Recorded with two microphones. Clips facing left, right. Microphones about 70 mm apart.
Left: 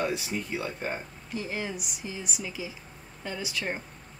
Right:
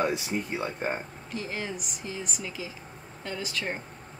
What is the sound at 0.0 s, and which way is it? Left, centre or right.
Speech, right.